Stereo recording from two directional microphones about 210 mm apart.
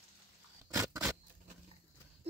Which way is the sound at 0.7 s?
15° right (ahead or behind).